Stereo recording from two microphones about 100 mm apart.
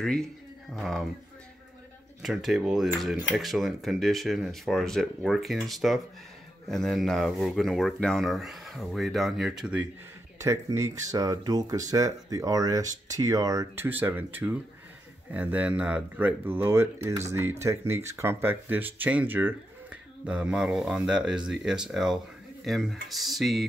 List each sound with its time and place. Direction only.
0.0 s speech: 5° left (ahead or behind)
2.2 s speech: 5° right (ahead or behind)
10.4 s speech: 30° right (ahead or behind)
13.7 s speech: 20° right (ahead or behind); by 23.7 s centre (ahead or behind)